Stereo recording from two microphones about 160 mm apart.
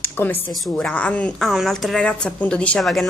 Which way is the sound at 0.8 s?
10° left (ahead or behind).